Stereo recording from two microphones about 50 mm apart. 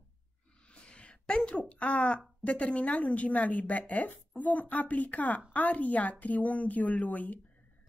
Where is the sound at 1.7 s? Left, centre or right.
Left.